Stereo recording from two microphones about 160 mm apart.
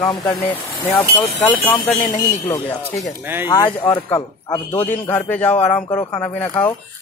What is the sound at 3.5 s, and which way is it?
Speech, 25° left (ahead or behind).